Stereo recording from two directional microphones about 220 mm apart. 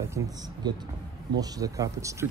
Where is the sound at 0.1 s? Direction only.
15° right (ahead or behind).